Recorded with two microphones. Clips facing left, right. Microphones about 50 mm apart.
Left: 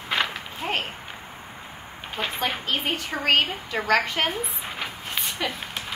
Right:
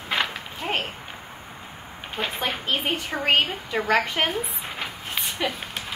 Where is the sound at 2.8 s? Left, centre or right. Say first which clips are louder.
Right 1 dB; centre.